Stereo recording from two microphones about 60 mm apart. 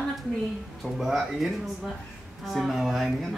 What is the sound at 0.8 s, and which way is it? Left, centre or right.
A woman's voice, centre.